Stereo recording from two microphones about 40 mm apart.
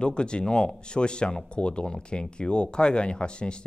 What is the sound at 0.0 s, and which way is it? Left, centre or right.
Speech, left.